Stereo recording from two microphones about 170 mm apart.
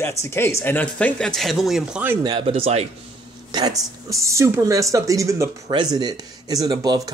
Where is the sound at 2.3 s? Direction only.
30° right (ahead or behind).